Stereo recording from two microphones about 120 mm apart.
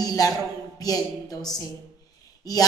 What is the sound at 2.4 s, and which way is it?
Speech, 30° left (ahead or behind).